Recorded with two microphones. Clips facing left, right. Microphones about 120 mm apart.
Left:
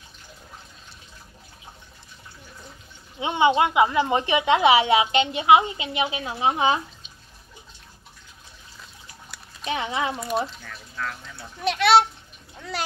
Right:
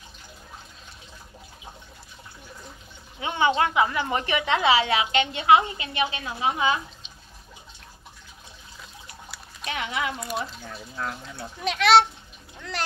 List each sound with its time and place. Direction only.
3.2 s a woman's voice: 20° left (ahead or behind)
9.7 s a woman's voice: 25° left (ahead or behind)
10.6 s speech: 25° right (ahead or behind)
11.6 s a child's voice: centre (ahead or behind)